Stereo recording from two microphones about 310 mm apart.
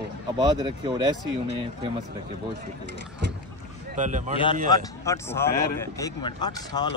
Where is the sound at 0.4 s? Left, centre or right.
Centre.